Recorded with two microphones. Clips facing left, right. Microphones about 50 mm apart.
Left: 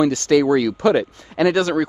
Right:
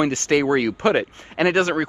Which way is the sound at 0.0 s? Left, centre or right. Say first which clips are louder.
Left 3 dB; right.